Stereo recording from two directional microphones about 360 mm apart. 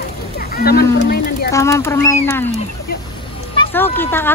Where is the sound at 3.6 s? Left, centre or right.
Centre.